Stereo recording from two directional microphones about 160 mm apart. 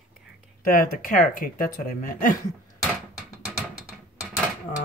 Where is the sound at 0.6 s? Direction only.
60° left (ahead or behind).